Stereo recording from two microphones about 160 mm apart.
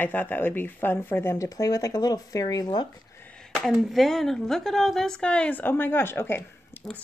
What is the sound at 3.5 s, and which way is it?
Speech, centre (ahead or behind).